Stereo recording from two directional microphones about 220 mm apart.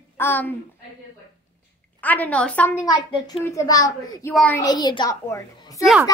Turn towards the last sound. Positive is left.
turn(degrees=15)  # may be behind; listen again after turning